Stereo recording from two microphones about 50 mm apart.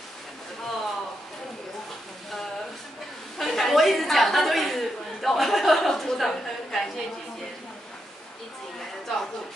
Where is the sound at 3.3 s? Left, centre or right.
Centre.